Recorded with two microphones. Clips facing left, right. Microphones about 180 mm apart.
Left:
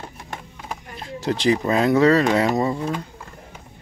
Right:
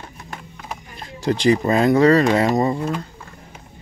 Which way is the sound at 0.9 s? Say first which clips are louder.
Right 3 dB; centre (ahead or behind).